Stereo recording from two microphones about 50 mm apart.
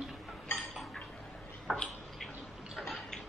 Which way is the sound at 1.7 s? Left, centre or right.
Centre.